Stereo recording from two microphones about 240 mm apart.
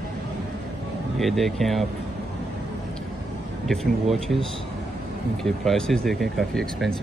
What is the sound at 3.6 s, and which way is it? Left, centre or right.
Speech, centre.